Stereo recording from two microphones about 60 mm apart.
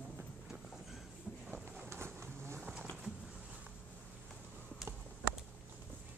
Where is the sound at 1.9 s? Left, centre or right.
Right.